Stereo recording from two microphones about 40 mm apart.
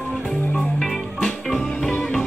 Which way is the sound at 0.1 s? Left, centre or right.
Left.